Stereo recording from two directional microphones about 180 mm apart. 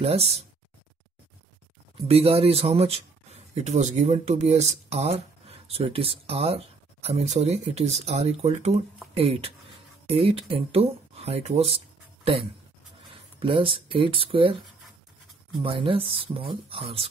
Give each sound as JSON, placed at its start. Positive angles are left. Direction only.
{"t": 0.0, "sound": "speech", "side_deg": -35}
{"t": 2.0, "sound": "speech", "side_deg": -35}
{"t": 13.1, "sound": "speech", "side_deg": -30}
{"t": 15.6, "sound": "speech", "side_deg": -30}